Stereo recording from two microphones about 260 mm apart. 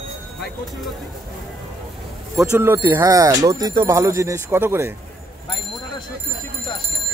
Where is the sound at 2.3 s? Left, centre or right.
Centre.